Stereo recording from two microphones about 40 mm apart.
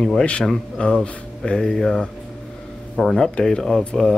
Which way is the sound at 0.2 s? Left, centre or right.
Left.